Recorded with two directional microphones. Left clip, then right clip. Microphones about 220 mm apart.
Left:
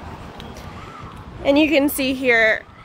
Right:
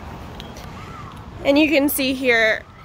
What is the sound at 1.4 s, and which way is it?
A woman's voice, centre (ahead or behind).